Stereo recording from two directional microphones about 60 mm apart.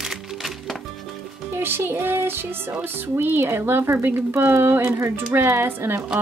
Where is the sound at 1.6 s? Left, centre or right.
Right.